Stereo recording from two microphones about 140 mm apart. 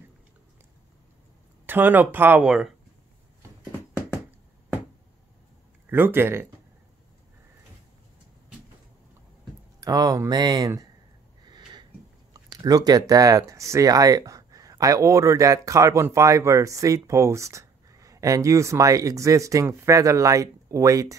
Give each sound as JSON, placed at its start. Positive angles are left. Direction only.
{"t": 1.7, "sound": "speech", "side_deg": -15}
{"t": 5.9, "sound": "speech", "side_deg": -15}
{"t": 9.8, "sound": "speech", "side_deg": -25}
{"t": 11.4, "sound": "sniff", "side_deg": -30}
{"t": 12.4, "sound": "speech", "side_deg": -25}